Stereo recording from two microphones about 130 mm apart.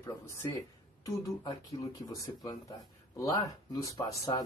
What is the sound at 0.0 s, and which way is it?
Speech, 20° left (ahead or behind).